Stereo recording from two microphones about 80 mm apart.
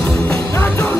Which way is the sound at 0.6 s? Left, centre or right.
Left.